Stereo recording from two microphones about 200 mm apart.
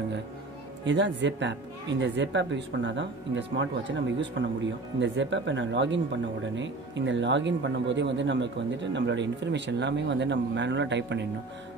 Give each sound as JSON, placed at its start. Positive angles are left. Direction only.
{"t": 0.8, "sound": "speech", "side_deg": -65}